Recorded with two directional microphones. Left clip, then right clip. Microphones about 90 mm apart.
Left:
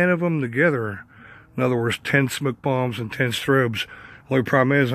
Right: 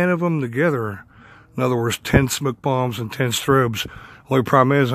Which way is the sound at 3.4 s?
30° right (ahead or behind).